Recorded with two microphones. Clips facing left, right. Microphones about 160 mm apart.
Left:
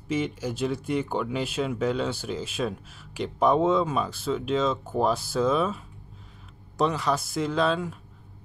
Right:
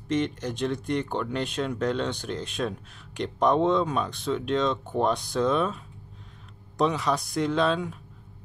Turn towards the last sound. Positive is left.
turn(degrees=0)  # may be behind; listen again after turning